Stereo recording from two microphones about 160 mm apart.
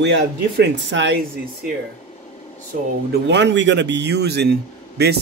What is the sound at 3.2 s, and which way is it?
A man's voice, 90° right.